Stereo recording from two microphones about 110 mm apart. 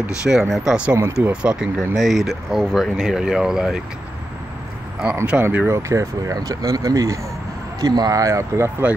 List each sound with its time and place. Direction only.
0.0 s speech: 5° right (ahead or behind)
5.2 s speech: 10° right (ahead or behind)
5.8 s speech: 25° right (ahead or behind)